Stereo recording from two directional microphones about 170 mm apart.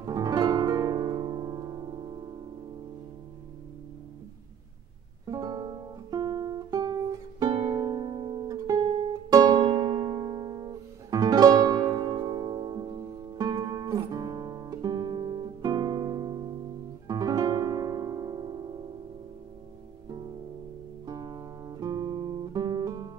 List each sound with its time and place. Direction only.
0.0 s music: 25° right (ahead or behind)
5.2 s music: 20° right (ahead or behind)
21.0 s guitar: 25° right (ahead or behind)